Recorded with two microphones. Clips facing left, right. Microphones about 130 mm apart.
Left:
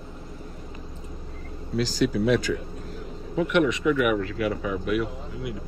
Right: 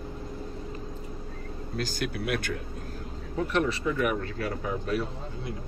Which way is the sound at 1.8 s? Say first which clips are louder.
Left 9 dB; 55° right (ahead or behind).